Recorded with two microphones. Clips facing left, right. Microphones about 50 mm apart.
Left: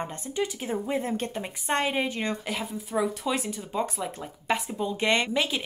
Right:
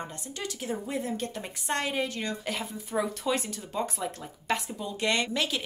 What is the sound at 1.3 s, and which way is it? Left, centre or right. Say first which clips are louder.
Speech: left 4 dB; left.